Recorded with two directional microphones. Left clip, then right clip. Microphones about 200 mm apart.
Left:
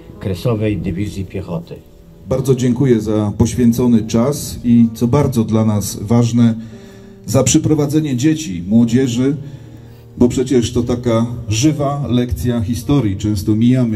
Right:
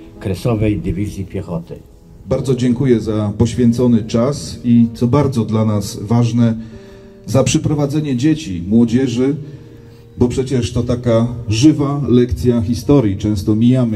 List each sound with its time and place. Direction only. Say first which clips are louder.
0.2 s a man's voice: even; 25° left (ahead or behind)
2.2 s a man's voice: left 1 dB; 50° left (ahead or behind)